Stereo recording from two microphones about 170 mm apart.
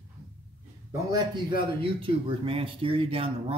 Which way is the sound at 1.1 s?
30° right (ahead or behind).